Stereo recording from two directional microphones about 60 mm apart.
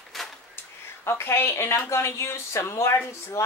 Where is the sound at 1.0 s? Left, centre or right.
Left.